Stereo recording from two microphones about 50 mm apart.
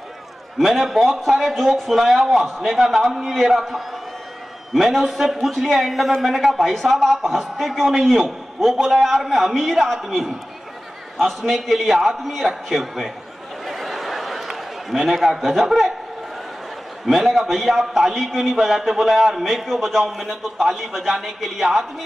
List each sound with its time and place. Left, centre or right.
0.6 s a man's voice: centre
13.7 s a sound: centre
17.0 s a man's voice: centre